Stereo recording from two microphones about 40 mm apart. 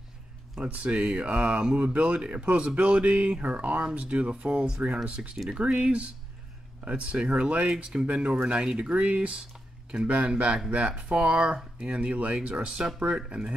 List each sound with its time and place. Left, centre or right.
0.8 s speech: right
7.7 s speech: right
10.0 s speech: right